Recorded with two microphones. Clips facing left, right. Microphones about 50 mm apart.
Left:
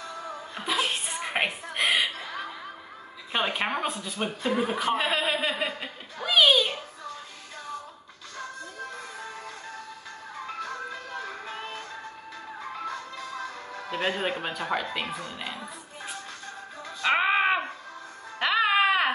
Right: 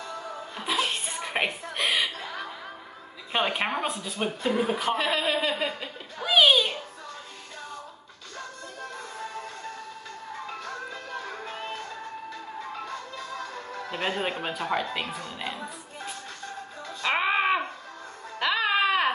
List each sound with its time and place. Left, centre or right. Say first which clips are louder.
0.6 s chuckle: even; centre
3.3 s a woman's voice: right 1 dB; centre
4.9 s a man's voice: even; centre
6.2 s a sound: right 1 dB; centre
13.8 s a woman's voice: left 1 dB; centre
17.0 s a sound: left 2 dB; centre
18.4 s music: left 2 dB; centre